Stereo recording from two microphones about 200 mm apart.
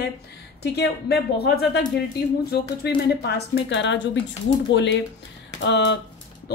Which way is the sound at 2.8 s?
60° left (ahead or behind).